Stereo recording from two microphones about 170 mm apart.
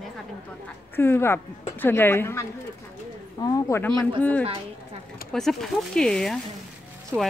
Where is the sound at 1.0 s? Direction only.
15° left (ahead or behind).